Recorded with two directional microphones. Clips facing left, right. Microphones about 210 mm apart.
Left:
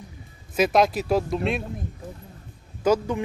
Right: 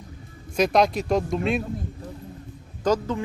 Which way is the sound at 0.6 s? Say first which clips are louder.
Even; 5° left (ahead or behind).